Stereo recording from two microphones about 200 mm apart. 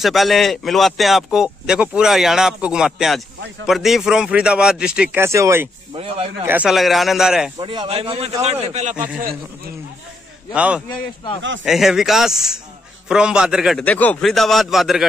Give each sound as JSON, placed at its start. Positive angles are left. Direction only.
{"t": 0.0, "sound": "a man's voice", "side_deg": 0}
{"t": 5.9, "sound": "a man's voice", "side_deg": -30}
{"t": 6.4, "sound": "a man's voice", "side_deg": -5}
{"t": 7.6, "sound": "a man's voice", "side_deg": -25}
{"t": 8.9, "sound": "speech", "side_deg": -5}
{"t": 10.5, "sound": "a man's voice", "side_deg": -5}